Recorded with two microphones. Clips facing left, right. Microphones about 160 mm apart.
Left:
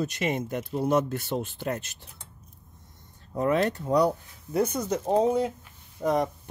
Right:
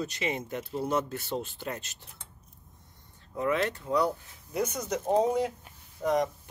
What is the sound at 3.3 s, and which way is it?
Speech, 40° left (ahead or behind).